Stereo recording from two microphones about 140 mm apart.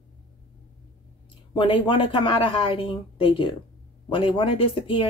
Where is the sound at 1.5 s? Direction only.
40° left (ahead or behind).